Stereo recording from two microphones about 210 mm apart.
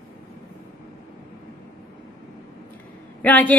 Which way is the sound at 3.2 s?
5° left (ahead or behind).